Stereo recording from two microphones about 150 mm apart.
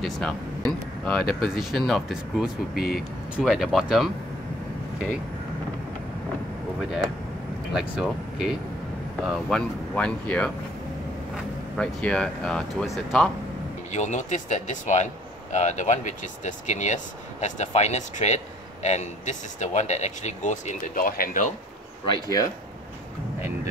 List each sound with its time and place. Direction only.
0.0 s speech: 5° left (ahead or behind)
2.7 s speech: 85° left
3.3 s speech: centre (ahead or behind)
7.7 s speech: 5° right (ahead or behind)
11.7 s speech: 5° left (ahead or behind)
13.9 s speech: 55° left (ahead or behind)